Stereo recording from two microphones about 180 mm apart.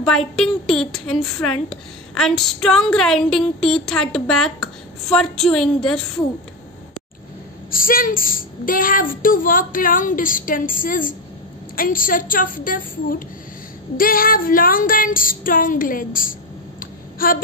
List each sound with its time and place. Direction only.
0.4 s speech: centre (ahead or behind)
7.7 s a woman's voice: 50° left (ahead or behind)
16.8 s a sound: 50° left (ahead or behind)